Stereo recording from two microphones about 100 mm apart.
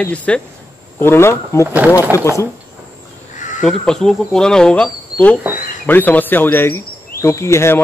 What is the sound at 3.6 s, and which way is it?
A man's voice, 5° left (ahead or behind).